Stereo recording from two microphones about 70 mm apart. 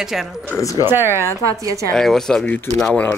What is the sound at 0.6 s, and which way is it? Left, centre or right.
Speech, left.